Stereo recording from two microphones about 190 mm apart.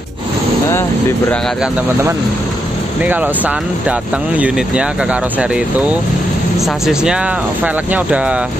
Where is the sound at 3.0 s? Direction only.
10° right (ahead or behind).